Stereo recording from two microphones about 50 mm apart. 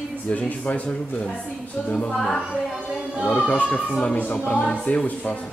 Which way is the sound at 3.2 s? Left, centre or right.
Left.